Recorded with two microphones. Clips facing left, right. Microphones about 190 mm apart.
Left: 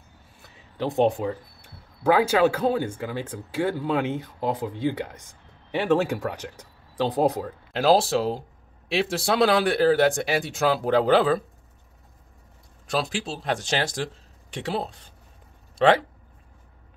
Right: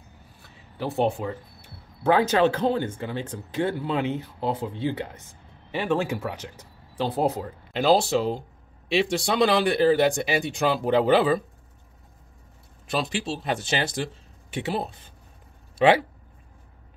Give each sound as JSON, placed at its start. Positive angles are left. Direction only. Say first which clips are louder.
{"t": 0.8, "sound": "speech", "louder": "left 3 dB", "side_deg": 15}
{"t": 7.7, "sound": "speech", "louder": "left 1 dB", "side_deg": 0}
{"t": 12.8, "sound": "speech", "louder": "even", "side_deg": 0}